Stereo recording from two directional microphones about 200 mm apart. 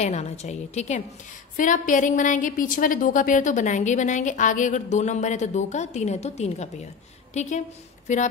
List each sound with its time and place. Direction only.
0.0 s a woman's voice: 35° left (ahead or behind)